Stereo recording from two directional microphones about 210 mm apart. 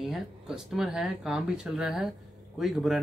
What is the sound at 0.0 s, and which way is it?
A man's voice, centre (ahead or behind).